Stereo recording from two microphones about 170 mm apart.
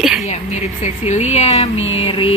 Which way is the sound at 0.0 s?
Centre (ahead or behind).